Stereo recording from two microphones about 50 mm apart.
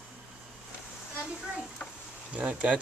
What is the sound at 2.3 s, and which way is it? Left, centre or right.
Speech, right.